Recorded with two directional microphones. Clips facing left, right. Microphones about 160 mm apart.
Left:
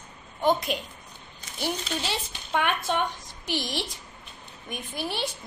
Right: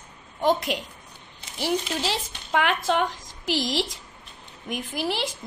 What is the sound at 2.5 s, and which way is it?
A woman's voice, 90° right.